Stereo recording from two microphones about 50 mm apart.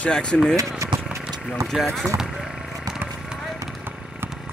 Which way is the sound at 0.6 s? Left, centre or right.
Right.